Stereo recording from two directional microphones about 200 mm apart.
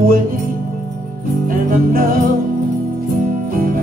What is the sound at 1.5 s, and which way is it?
Music, 45° right (ahead or behind).